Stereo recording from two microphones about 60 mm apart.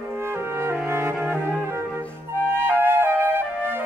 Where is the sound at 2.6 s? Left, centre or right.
Right.